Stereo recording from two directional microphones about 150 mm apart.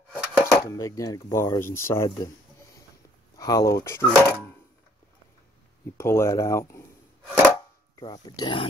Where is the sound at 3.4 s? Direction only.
25° left (ahead or behind).